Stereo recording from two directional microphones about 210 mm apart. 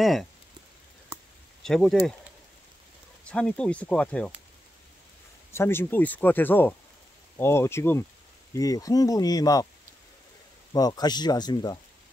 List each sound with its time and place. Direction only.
0.0 s speech: centre (ahead or behind)
1.6 s speech: centre (ahead or behind)
3.3 s speech: 5° left (ahead or behind)
5.5 s speech: 10° left (ahead or behind)
10.7 s speech: 20° left (ahead or behind)